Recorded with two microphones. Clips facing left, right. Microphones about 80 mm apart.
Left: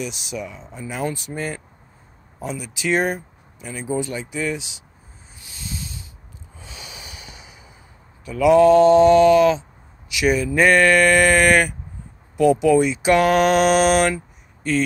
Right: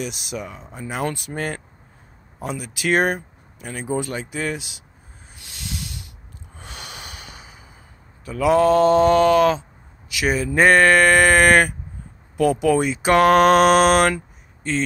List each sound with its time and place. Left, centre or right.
0.0 s speech: right
5.3 s snake: right
6.5 s snort: right
8.3 s mantra: right
12.4 s speech: right
14.7 s mantra: right